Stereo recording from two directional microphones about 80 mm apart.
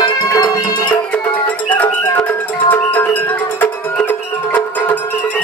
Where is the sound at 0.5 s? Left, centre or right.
Left.